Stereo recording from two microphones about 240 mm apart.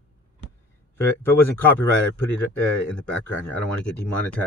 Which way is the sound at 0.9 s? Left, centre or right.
Centre.